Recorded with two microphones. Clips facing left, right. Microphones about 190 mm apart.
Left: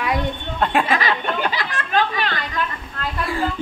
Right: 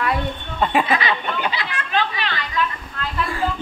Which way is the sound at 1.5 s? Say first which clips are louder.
Left 2 dB; 45° left (ahead or behind).